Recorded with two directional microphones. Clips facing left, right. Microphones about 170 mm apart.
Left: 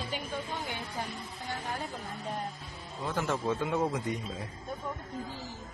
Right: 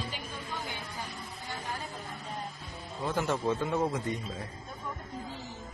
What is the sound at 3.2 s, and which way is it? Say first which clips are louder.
Speech: right 1 dB; 5° right (ahead or behind).